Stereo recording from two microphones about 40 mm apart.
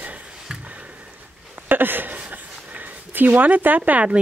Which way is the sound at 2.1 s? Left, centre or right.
Right.